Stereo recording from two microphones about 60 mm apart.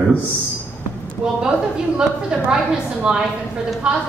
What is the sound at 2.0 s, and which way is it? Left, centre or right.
A woman's voice, centre.